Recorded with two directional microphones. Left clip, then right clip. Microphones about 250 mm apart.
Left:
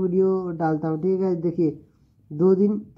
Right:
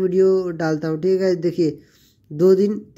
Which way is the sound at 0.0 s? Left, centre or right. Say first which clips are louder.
Right 5 dB; right.